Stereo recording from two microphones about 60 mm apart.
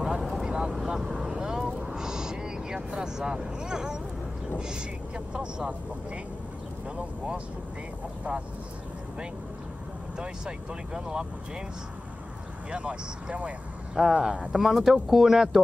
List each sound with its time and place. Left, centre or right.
0.0 s vehicle: centre
1.7 s a sound: centre
4.6 s speech: centre
10.1 s speech: centre
12.7 s speech: right
13.9 s speech: centre
14.3 s speech: right
14.6 s speech: centre